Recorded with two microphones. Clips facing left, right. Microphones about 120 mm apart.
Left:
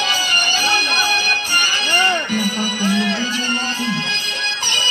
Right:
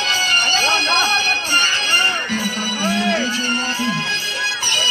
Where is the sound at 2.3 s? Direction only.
15° left (ahead or behind).